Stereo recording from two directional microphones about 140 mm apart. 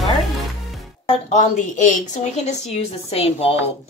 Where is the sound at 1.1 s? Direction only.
55° left (ahead or behind).